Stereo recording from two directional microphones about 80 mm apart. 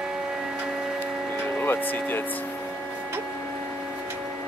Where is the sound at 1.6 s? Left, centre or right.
Left.